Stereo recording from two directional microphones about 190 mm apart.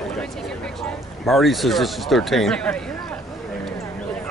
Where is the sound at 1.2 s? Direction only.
Centre (ahead or behind).